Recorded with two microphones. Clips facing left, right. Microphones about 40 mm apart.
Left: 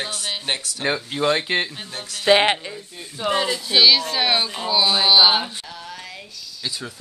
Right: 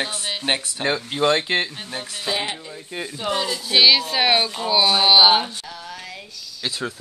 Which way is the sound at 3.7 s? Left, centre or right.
Centre.